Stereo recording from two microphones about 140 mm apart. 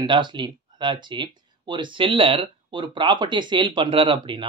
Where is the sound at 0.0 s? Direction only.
35° right (ahead or behind).